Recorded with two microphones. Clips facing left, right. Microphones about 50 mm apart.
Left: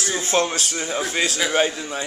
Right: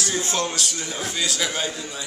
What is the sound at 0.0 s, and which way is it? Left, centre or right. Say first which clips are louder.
Speech: left 4 dB; left.